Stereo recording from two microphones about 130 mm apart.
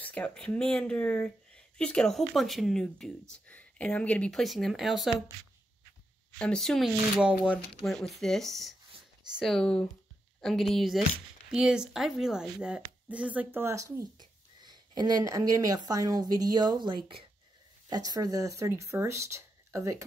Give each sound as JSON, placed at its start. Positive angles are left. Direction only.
{"t": 0.0, "sound": "speech", "side_deg": 10}
{"t": 6.3, "sound": "speech", "side_deg": 5}
{"t": 7.2, "sound": "speech", "side_deg": -10}
{"t": 7.9, "sound": "speech", "side_deg": 0}
{"t": 14.6, "sound": "speech", "side_deg": -35}